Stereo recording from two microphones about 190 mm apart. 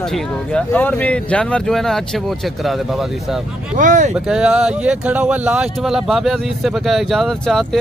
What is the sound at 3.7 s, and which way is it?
Speech, 40° right (ahead or behind).